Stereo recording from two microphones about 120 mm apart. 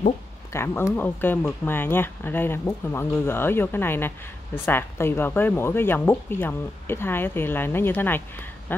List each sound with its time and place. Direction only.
0.5 s speech: 20° left (ahead or behind)